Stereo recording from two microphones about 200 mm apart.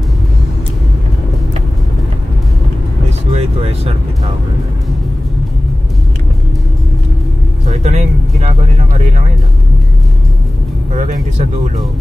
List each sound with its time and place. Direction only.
3.3 s vehicle: 30° right (ahead or behind)
7.6 s vehicle: 35° right (ahead or behind)
10.9 s music: 35° right (ahead or behind)